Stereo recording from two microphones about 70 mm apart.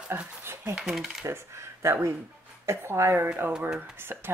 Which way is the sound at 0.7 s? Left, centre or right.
Centre.